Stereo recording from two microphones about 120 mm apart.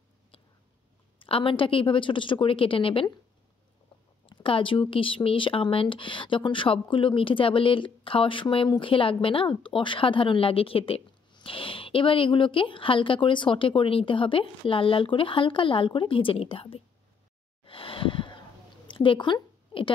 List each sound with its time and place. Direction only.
1.2 s speech: 45° left (ahead or behind)
4.3 s speech: 45° left (ahead or behind)
17.6 s a sound: 50° left (ahead or behind)